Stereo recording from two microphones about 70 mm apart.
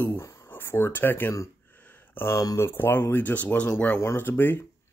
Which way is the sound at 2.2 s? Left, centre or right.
Left.